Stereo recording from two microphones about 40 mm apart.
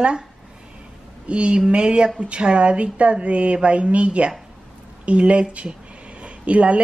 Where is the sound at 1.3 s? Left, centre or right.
Right.